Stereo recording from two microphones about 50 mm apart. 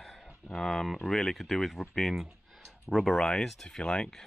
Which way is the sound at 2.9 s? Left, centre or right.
Centre.